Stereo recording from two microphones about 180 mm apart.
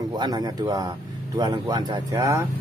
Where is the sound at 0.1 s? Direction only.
25° right (ahead or behind).